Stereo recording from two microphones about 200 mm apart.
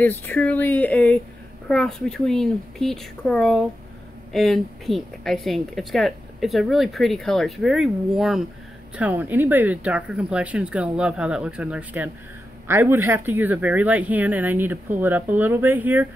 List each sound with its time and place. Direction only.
0.0 s a woman's voice: 10° left (ahead or behind); by 16.1 s 10° right (ahead or behind)